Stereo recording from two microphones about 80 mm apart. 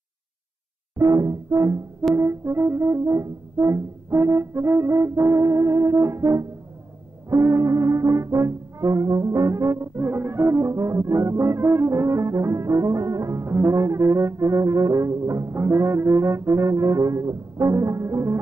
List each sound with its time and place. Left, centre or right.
0.9 s brass instrument: right